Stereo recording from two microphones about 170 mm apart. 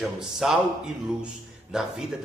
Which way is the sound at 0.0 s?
Centre (ahead or behind).